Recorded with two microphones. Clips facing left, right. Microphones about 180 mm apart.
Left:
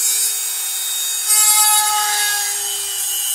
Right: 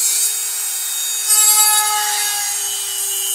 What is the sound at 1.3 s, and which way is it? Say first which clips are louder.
Wood: left 1 dB; centre (ahead or behind).